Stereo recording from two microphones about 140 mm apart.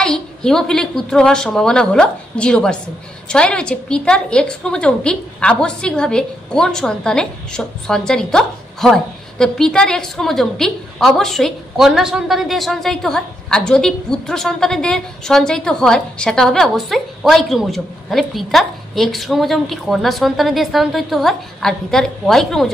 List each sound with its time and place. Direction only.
0.0 s a woman's voice: 5° left (ahead or behind)